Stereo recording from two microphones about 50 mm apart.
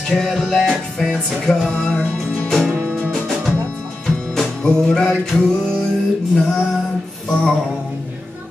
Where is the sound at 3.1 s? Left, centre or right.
Centre.